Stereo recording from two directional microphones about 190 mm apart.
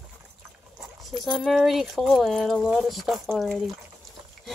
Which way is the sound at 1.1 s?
Centre (ahead or behind).